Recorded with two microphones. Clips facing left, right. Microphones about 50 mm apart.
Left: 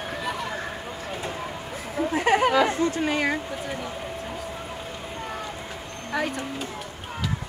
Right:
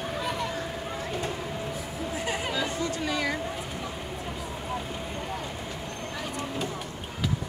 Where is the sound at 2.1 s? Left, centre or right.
Left.